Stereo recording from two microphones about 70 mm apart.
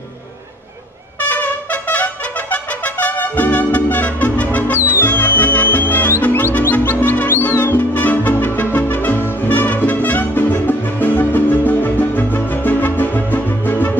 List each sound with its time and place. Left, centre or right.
1.3 s trumpet: left
5.0 s music: left